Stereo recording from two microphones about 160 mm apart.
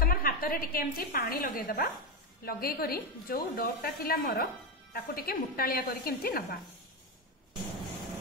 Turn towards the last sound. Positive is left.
turn(degrees=70)  # may be behind; listen again after turning